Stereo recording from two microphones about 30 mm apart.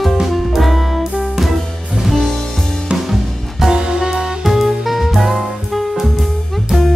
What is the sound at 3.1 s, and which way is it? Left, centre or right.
Music, centre.